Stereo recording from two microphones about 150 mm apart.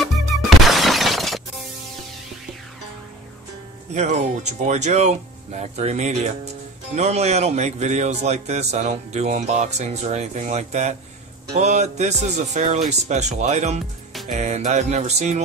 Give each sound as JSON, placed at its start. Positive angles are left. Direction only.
{"t": 0.7, "sound": "shatter", "side_deg": 0}
{"t": 3.9, "sound": "a man's voice", "side_deg": -50}